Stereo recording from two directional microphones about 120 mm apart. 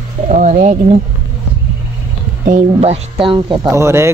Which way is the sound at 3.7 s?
20° right (ahead or behind).